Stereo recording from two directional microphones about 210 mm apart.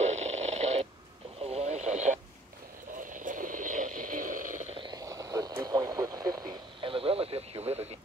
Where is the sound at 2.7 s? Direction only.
40° right (ahead or behind).